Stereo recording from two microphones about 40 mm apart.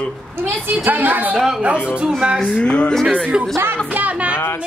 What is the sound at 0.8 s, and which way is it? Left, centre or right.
Speech, right.